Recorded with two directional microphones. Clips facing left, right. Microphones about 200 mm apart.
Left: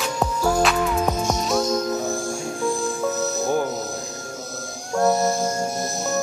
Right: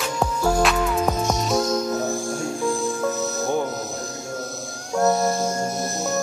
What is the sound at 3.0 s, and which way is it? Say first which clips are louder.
Music: left 3 dB; 5° left (ahead or behind).